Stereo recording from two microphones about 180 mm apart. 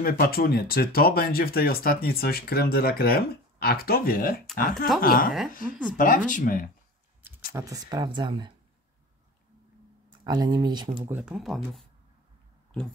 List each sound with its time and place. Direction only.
0.0 s speech: 55° left (ahead or behind)
7.5 s speech: 20° right (ahead or behind)
10.0 s speech: 20° right (ahead or behind)
11.1 s speech: 10° right (ahead or behind)